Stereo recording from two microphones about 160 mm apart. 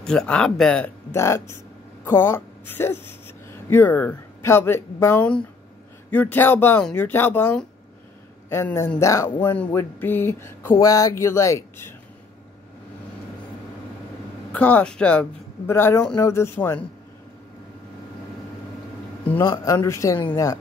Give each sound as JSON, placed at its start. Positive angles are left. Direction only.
{"t": 0.0, "sound": "speech", "side_deg": 5}
{"t": 1.1, "sound": "a woman's voice", "side_deg": 15}
{"t": 14.5, "sound": "speech", "side_deg": 10}
{"t": 19.4, "sound": "speech", "side_deg": 25}